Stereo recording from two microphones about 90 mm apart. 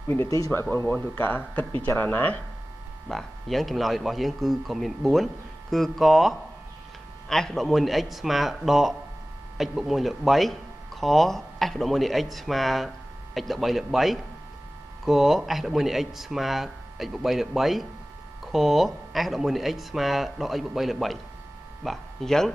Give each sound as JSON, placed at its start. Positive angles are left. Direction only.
{"t": 0.5, "sound": "speech", "side_deg": 25}
{"t": 3.1, "sound": "speech", "side_deg": 0}